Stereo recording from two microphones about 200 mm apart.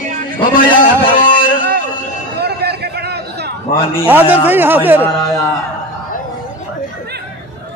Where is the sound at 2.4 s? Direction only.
55° right (ahead or behind).